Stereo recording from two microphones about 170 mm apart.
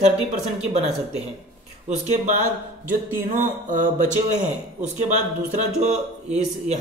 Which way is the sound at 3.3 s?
50° right (ahead or behind).